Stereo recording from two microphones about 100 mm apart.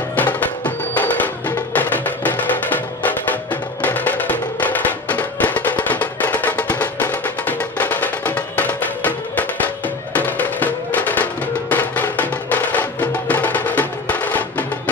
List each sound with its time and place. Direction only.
0.1 s music: 15° left (ahead or behind)
3.8 s music: 15° left (ahead or behind)